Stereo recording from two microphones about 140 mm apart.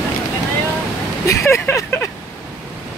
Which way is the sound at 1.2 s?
20° left (ahead or behind).